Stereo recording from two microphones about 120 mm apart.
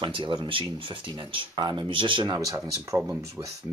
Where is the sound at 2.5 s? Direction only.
25° right (ahead or behind).